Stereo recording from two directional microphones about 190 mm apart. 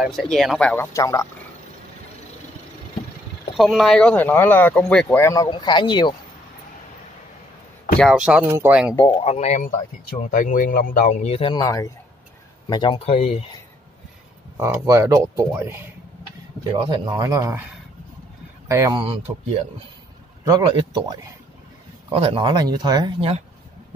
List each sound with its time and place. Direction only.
0.0 s speech: centre (ahead or behind)
3.5 s speech: centre (ahead or behind); by 6.1 s 25° left (ahead or behind)
8.0 s speech: 5° right (ahead or behind)
8.9 s speech: 20° left (ahead or behind)
9.2 s speech: 35° left (ahead or behind)
14.6 s speech: 15° right (ahead or behind)
16.7 s speech: 25° right (ahead or behind)
18.7 s speech: 15° right (ahead or behind)
19.0 s speech: 30° right (ahead or behind)